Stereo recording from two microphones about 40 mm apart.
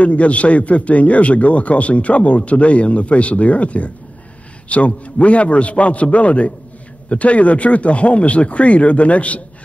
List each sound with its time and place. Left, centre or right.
0.0 s a man's voice: left